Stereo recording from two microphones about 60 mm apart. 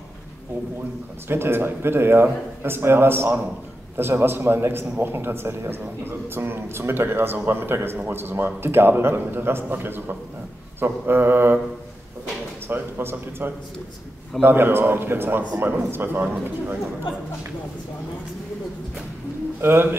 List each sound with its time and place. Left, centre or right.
1.3 s a man's voice: right
12.6 s a man's voice: right
19.6 s a man's voice: right